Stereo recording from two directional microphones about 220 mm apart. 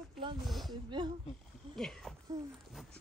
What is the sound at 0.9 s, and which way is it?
Speech, 20° right (ahead or behind).